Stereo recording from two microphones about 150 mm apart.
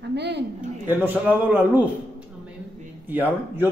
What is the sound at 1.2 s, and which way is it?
Speech, 10° right (ahead or behind).